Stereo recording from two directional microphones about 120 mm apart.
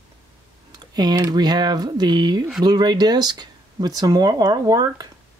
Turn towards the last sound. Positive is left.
turn(degrees=-30)  # may be behind; listen again after turning